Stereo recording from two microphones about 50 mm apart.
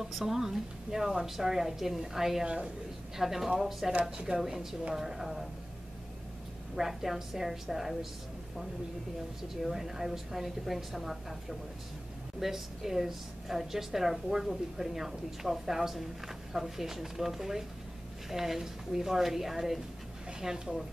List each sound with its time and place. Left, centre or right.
0.0 s a woman's voice: centre
2.4 s speech: right
3.2 s a woman's voice: centre
6.7 s a woman's voice: centre
9.5 s a woman's voice: centre